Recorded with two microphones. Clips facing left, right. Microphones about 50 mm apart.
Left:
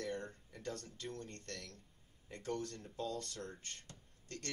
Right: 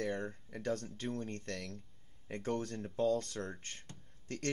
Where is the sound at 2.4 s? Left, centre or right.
Right.